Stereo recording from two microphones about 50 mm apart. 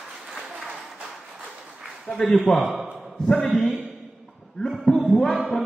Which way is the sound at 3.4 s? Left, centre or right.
Centre.